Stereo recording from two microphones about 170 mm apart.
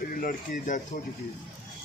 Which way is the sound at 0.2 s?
50° left (ahead or behind).